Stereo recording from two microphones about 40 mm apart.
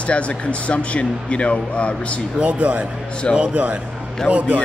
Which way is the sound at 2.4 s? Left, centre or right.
Right.